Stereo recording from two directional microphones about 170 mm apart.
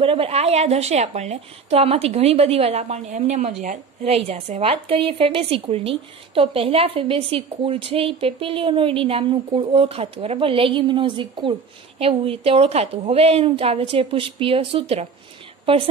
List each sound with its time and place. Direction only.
0.0 s a woman's voice: 35° right (ahead or behind)